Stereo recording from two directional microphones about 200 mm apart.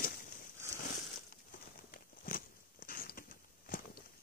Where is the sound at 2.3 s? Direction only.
45° left (ahead or behind).